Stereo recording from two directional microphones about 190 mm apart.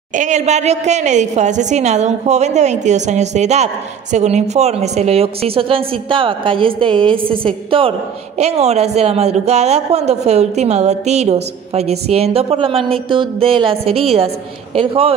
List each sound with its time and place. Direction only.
0.1 s a woman's voice: 40° right (ahead or behind)